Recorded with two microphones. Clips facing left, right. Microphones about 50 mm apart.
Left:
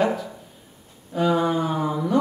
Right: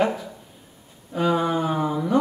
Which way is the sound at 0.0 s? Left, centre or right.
Centre.